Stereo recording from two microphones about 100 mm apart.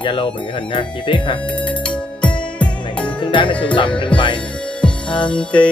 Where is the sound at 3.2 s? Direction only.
55° left (ahead or behind).